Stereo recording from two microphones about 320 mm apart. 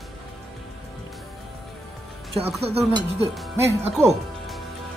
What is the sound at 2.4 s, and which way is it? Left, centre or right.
Speech, centre.